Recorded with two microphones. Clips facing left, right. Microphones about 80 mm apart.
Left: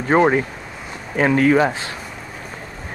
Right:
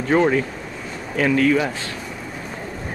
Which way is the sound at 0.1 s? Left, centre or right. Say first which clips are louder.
Left 2 dB; left.